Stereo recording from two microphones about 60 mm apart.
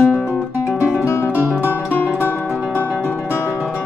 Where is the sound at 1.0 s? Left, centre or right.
Left.